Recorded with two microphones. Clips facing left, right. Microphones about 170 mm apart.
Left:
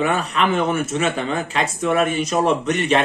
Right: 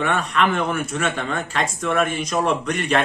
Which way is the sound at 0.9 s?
30° left (ahead or behind).